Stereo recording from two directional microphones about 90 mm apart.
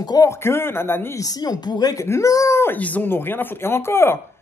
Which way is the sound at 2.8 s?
15° left (ahead or behind).